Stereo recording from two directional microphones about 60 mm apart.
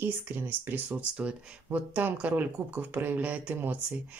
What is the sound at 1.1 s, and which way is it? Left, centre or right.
Speech, centre.